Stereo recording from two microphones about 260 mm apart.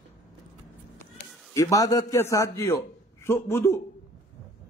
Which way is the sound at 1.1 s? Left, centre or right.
Centre.